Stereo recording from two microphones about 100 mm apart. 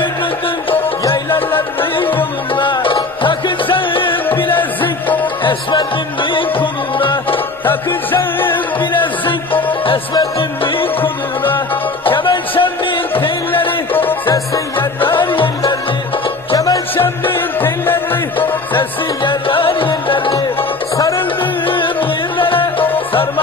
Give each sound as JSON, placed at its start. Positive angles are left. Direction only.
{"t": 1.8, "sound": "music", "side_deg": 60}
{"t": 4.6, "sound": "music", "side_deg": 20}
{"t": 5.4, "sound": "music", "side_deg": 55}
{"t": 7.6, "sound": "music", "side_deg": 20}
{"t": 9.0, "sound": "music", "side_deg": 60}
{"t": 11.0, "sound": "music", "side_deg": 20}
{"t": 12.0, "sound": "music", "side_deg": 60}
{"t": 13.9, "sound": "music", "side_deg": 20}
{"t": 15.1, "sound": "music", "side_deg": 60}
{"t": 16.5, "sound": "music", "side_deg": 35}
{"t": 16.9, "sound": "music", "side_deg": 20}
{"t": 18.8, "sound": "music", "side_deg": 60}
{"t": 21.6, "sound": "music", "side_deg": 55}